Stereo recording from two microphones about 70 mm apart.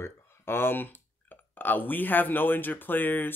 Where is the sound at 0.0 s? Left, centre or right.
Left.